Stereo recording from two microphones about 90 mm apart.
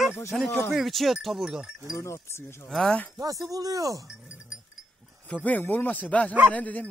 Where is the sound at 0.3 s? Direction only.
Centre (ahead or behind).